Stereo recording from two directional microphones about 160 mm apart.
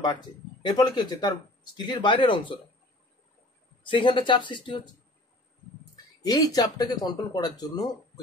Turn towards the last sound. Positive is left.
turn(degrees=25)  # may be behind; listen again after turning